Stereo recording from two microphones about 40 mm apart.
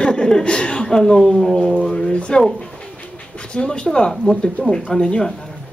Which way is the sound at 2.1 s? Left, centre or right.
Left.